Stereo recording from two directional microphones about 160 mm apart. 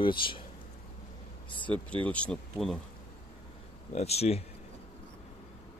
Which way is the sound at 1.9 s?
10° left (ahead or behind).